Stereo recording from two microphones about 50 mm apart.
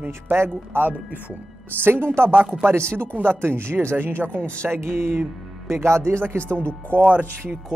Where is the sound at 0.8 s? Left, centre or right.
Right.